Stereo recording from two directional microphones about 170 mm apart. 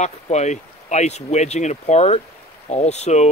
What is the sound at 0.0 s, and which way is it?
Speech, 40° left (ahead or behind).